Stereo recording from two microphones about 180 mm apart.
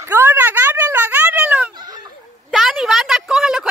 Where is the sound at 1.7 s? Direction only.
25° right (ahead or behind).